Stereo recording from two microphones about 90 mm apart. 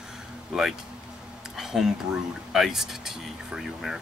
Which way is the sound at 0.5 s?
10° right (ahead or behind).